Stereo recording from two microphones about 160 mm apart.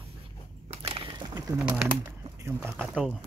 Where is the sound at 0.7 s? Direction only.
35° right (ahead or behind).